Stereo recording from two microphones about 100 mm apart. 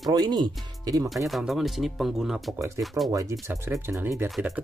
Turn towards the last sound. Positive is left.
turn(degrees=0)  # may be behind; listen again after turning